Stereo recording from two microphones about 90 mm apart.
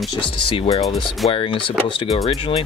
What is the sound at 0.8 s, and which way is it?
Speech, centre (ahead or behind).